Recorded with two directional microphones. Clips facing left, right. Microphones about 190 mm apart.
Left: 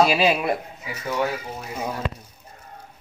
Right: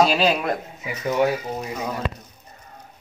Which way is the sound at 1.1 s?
25° right (ahead or behind).